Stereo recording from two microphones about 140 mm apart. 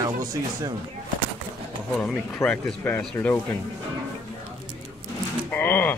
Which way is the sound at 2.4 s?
10° left (ahead or behind).